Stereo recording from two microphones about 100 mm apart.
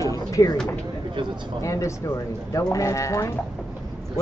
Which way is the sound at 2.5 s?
35° left (ahead or behind).